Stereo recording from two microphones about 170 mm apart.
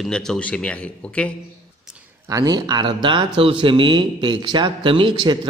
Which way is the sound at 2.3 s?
25° right (ahead or behind).